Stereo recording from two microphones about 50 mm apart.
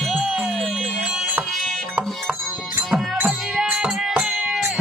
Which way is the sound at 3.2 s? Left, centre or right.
Right.